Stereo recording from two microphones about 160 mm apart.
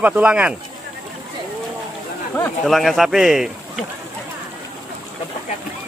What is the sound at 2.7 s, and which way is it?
Speech, centre (ahead or behind).